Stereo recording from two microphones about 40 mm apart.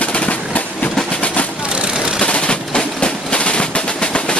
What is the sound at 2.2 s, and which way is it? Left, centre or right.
Percussion, left.